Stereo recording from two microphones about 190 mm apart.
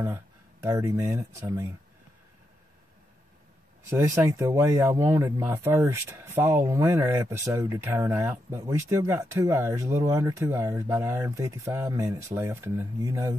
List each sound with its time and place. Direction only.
0.7 s speech: 15° right (ahead or behind)
3.9 s speech: 15° right (ahead or behind)